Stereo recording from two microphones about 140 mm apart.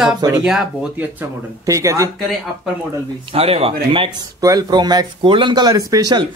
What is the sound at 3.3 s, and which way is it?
Speech, 45° right (ahead or behind).